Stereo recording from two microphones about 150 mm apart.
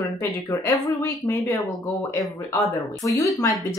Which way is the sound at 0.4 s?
20° left (ahead or behind).